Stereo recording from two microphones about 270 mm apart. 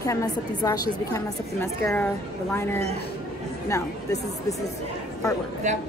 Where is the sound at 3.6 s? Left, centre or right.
Centre.